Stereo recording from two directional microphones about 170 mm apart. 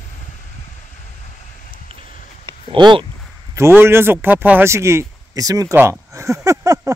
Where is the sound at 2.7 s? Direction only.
30° right (ahead or behind).